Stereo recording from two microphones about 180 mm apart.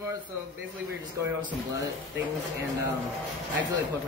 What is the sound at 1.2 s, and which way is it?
Speech, 20° right (ahead or behind).